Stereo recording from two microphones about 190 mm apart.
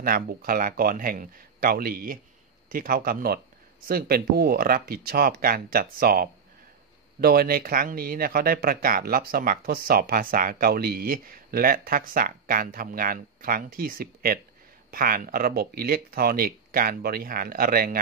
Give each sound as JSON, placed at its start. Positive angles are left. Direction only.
{"t": 0.0, "sound": "speech", "side_deg": -50}